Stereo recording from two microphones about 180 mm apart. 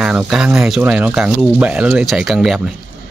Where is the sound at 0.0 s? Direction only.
5° right (ahead or behind).